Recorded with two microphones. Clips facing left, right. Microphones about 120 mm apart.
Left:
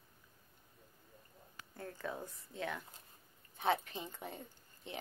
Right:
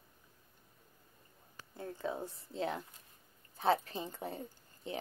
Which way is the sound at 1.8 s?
25° right (ahead or behind).